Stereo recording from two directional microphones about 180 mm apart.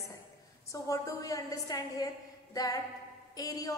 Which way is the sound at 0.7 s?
20° left (ahead or behind).